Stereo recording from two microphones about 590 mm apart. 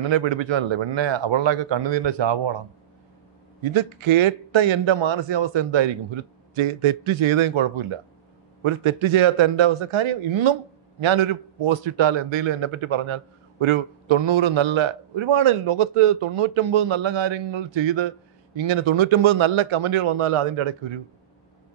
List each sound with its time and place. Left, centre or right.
0.0 s a man's voice: right
3.6 s a man's voice: right